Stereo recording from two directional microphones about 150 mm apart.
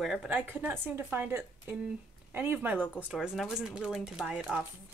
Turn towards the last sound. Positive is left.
turn(degrees=-5)  # may be behind; listen again after turning